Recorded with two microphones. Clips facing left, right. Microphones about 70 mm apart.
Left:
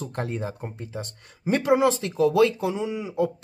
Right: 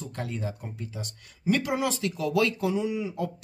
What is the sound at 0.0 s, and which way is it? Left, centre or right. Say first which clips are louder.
Speech: left 4 dB; left.